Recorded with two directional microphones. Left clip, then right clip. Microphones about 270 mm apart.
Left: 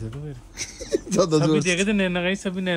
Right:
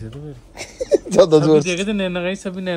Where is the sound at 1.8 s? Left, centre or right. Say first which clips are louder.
Right 1 dB; left.